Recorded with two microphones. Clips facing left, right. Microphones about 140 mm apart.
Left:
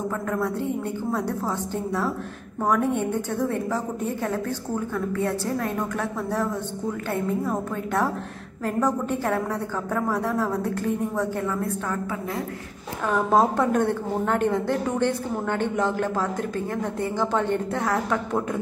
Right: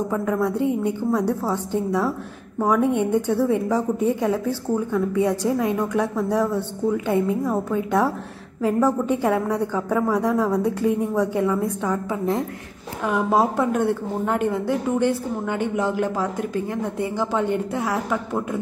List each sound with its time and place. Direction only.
0.1 s a woman's voice: 10° right (ahead or behind)